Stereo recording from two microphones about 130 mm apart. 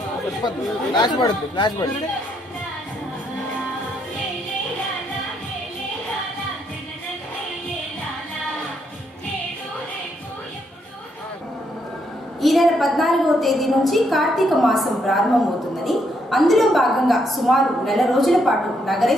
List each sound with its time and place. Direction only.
0.4 s speech: 35° left (ahead or behind)
12.4 s a woman's voice: centre (ahead or behind)